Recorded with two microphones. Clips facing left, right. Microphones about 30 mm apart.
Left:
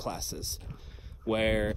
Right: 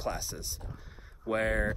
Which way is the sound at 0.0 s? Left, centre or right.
Centre.